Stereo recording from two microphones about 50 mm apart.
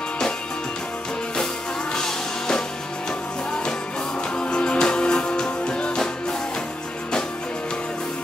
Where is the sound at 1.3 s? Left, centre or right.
Centre.